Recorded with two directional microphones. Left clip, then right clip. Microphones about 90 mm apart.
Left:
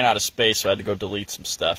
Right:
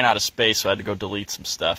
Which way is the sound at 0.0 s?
15° left (ahead or behind).